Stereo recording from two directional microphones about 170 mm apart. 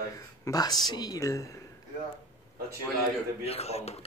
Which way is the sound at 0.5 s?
25° left (ahead or behind).